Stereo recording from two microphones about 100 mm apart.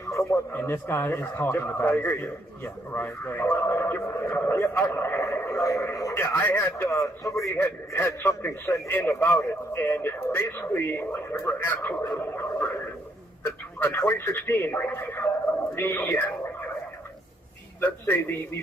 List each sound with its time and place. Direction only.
0.0 s a sound: 30° left (ahead or behind)
0.5 s speech: 20° left (ahead or behind)
6.1 s speech: 20° left (ahead or behind)
12.2 s a sound: 20° left (ahead or behind)
13.4 s a man's voice: 25° left (ahead or behind)
17.7 s speech: 20° left (ahead or behind)